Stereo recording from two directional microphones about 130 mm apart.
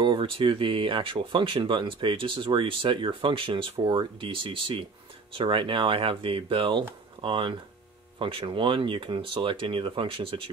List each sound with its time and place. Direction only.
0.0 s speech: 40° right (ahead or behind)